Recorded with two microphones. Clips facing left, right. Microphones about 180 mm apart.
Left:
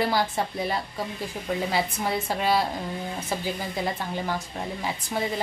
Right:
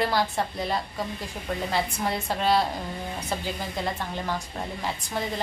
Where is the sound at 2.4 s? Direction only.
5° left (ahead or behind).